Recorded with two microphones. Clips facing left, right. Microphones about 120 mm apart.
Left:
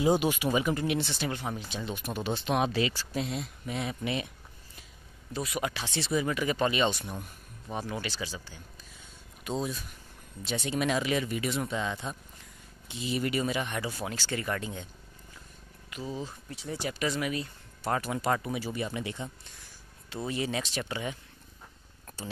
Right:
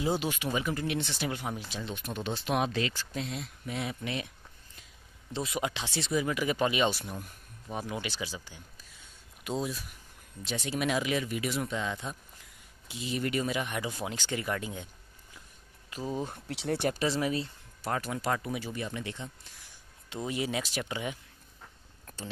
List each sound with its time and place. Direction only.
0.0 s speech: 15° left (ahead or behind)
1.2 s speech: 5° right (ahead or behind)
1.8 s speech: 5° left (ahead or behind)
5.3 s speech: 25° right (ahead or behind)
5.9 s speech: centre (ahead or behind)
15.9 s speech: 45° right (ahead or behind)
16.4 s speech: 75° right (ahead or behind)
17.0 s speech: 30° right (ahead or behind)
17.8 s speech: 5° left (ahead or behind)
20.2 s speech: 10° right (ahead or behind)
22.0 s a sound: 10° left (ahead or behind)